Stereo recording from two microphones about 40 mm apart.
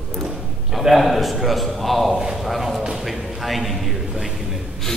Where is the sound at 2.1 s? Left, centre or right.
Centre.